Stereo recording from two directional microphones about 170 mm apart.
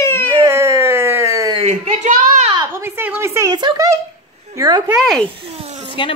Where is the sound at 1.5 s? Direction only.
40° right (ahead or behind).